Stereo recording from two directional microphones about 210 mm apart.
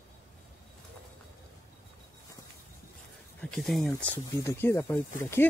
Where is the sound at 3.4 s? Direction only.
Centre (ahead or behind).